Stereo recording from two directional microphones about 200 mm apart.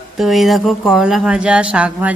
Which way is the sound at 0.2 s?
Centre (ahead or behind).